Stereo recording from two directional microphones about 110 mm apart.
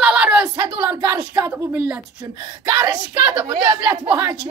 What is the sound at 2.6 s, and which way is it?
Speech, 35° right (ahead or behind).